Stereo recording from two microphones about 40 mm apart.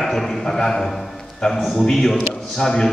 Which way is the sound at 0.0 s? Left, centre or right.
Centre.